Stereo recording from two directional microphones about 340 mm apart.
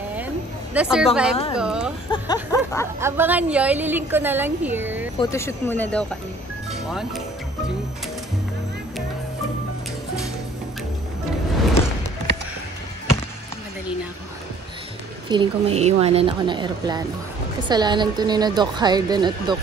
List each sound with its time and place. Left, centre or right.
0.7 s a woman's voice: centre
1.3 s speech: centre
1.6 s a sound: centre
2.0 s speech: centre
2.5 s a sound: centre
3.0 s a woman's voice: centre
5.2 s speech: centre
15.2 s a woman's voice: centre